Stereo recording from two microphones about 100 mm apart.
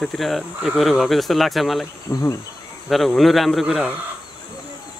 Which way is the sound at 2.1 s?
20° left (ahead or behind).